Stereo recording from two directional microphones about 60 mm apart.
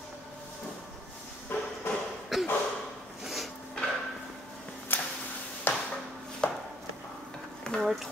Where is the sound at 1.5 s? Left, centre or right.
Left.